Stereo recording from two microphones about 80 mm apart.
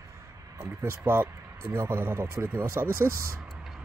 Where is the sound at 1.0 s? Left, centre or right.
Right.